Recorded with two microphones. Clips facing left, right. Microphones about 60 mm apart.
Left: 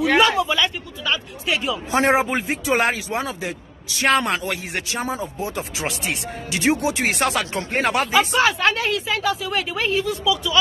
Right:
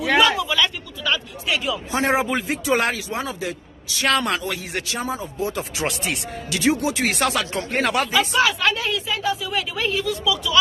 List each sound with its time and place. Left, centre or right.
0.2 s speech: left
2.1 s speech: left
3.2 s speech: left
4.0 s speech: left
4.4 s speech: left
5.4 s speech: left
5.8 s speech: centre
6.5 s speech: left
7.7 s speech: left
8.7 s a woman's voice: left
9.6 s speech: left